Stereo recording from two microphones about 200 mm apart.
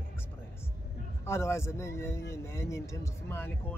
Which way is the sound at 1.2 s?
15° left (ahead or behind).